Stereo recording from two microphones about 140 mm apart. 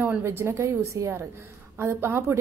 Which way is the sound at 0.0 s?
15° right (ahead or behind).